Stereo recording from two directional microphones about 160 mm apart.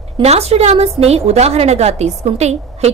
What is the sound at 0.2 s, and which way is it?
A woman's voice, 40° right (ahead or behind).